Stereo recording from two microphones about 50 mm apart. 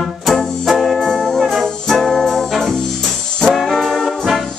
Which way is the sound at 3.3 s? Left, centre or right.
Centre.